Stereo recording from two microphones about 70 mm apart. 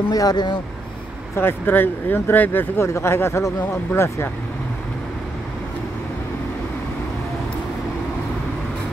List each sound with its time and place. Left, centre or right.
0.1 s speech: left
1.3 s speech: left